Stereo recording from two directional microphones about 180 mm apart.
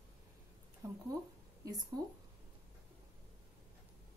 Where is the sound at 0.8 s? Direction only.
15° right (ahead or behind).